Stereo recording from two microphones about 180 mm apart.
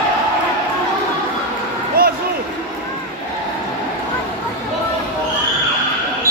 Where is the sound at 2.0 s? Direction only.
55° right (ahead or behind).